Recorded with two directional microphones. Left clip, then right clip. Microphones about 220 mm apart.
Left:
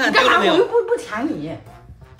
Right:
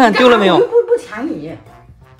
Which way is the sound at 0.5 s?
Centre (ahead or behind).